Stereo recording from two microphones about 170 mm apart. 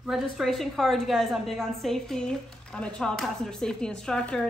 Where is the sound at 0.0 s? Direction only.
Centre (ahead or behind).